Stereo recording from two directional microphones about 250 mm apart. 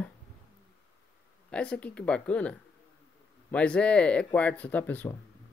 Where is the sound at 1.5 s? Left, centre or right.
Centre.